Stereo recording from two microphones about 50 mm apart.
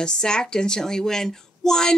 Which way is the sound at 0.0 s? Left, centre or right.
Centre.